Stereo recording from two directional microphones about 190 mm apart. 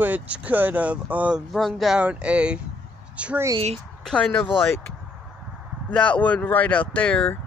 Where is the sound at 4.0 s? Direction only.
5° left (ahead or behind).